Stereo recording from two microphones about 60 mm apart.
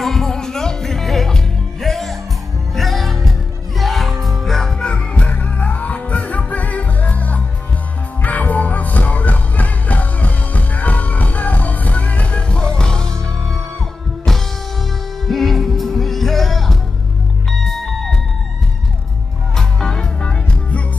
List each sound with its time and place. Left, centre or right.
0.0 s music: centre
4.8 s music: centre
15.2 s music: centre
19.5 s music: centre